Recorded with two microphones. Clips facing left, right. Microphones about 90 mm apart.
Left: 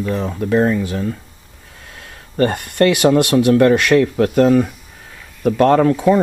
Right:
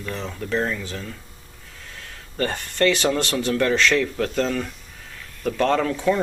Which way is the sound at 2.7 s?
10° left (ahead or behind).